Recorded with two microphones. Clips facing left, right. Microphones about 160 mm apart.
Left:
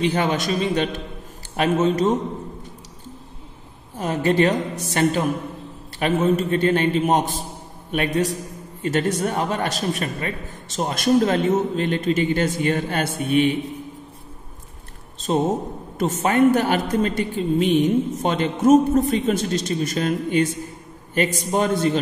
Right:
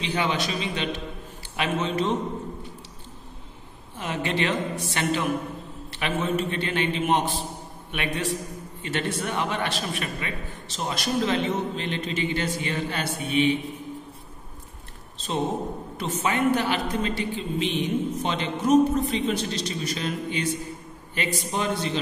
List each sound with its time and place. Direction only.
0.0 s a man's voice: 50° left (ahead or behind)
3.9 s a man's voice: 40° left (ahead or behind)
16.0 s a man's voice: 45° left (ahead or behind)